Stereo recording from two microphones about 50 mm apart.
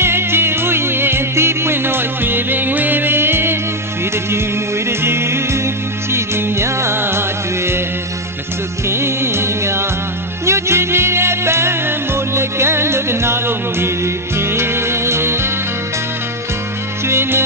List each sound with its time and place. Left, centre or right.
0.0 s music: right
4.8 s music: right
8.8 s music: right
17.1 s music: right